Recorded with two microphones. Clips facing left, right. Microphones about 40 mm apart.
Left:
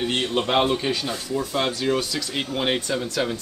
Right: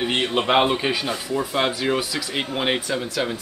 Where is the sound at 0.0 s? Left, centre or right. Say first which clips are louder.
Right 2 dB; centre.